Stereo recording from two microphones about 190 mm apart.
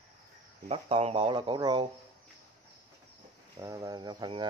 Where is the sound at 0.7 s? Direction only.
30° right (ahead or behind).